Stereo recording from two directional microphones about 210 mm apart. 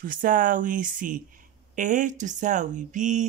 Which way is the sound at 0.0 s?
40° right (ahead or behind).